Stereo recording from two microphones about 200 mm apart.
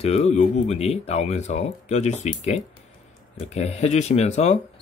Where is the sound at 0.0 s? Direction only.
30° left (ahead or behind).